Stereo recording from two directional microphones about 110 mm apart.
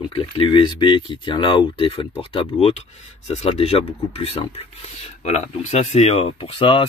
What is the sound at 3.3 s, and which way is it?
Speech, 70° left (ahead or behind).